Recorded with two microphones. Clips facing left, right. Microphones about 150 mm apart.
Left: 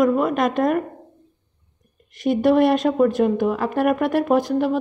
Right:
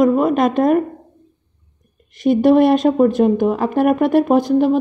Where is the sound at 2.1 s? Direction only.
30° right (ahead or behind).